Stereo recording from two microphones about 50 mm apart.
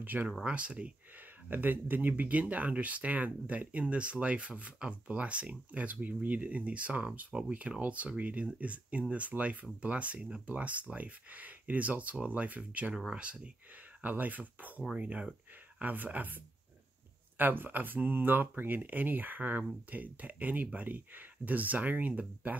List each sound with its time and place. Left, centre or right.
0.0 s speech: right
0.4 s speech: right
1.5 s speech: right
14.0 s speech: right